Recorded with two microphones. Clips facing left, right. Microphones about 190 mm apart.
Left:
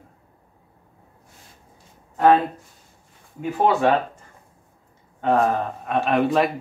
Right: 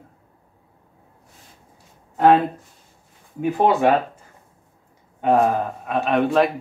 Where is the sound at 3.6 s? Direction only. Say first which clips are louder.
Right 1 dB; 15° right (ahead or behind).